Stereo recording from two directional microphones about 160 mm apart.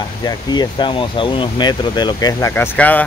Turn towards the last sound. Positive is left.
turn(degrees=10)  # may be behind; listen again after turning